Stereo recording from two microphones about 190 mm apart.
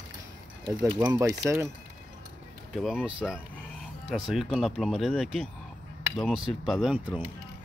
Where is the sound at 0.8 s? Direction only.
15° right (ahead or behind).